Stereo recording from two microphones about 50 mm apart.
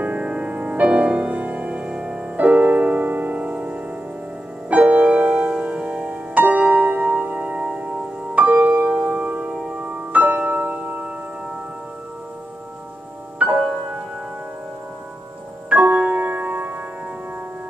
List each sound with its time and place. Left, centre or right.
0.0 s music: right
2.3 s music: right
9.6 s music: right
9.8 s music: right
13.4 s music: right
15.7 s music: right